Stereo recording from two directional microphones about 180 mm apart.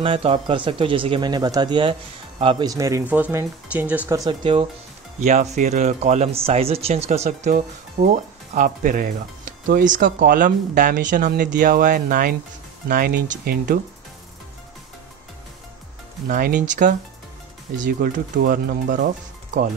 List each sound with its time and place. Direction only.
0.0 s speech: 30° right (ahead or behind); by 4.2 s 10° right (ahead or behind)
4.2 s speech: 25° right (ahead or behind)
5.2 s speech: 40° right (ahead or behind)
16.3 s speech: 50° right (ahead or behind)